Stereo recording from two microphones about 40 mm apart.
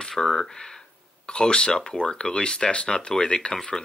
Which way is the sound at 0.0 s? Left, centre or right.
Centre.